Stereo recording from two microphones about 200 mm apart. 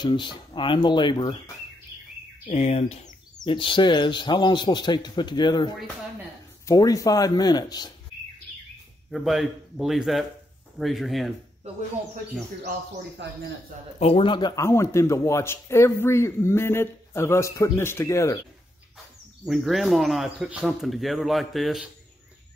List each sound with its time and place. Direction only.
0.0 s a man's voice: 25° left (ahead or behind)
2.4 s a man's voice: 30° left (ahead or behind)
9.1 s speech: centre (ahead or behind)
13.2 s speech: 60° right (ahead or behind)
13.9 s a man's voice: 30° left (ahead or behind)
19.4 s speech: centre (ahead or behind)